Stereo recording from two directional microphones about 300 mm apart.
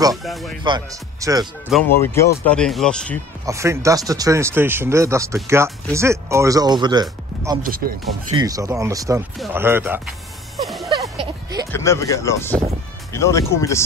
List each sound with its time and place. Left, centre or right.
0.1 s speech: centre
0.7 s speech: centre
1.7 s speech: centre
3.4 s speech: centre
7.6 s speech: right
8.4 s speech: centre
10.9 s a sound: centre
11.7 s speech: centre